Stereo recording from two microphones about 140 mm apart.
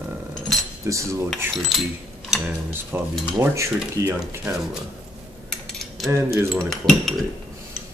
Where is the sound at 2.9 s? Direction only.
20° right (ahead or behind).